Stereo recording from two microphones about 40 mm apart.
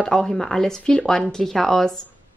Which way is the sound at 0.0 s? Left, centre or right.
Centre.